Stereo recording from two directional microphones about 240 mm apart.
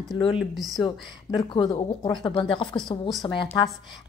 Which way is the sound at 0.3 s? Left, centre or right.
Centre.